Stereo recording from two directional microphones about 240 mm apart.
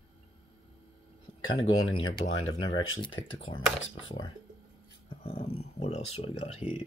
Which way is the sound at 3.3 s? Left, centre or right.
Left.